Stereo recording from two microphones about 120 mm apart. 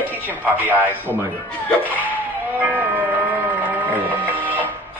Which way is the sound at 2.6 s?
15° right (ahead or behind).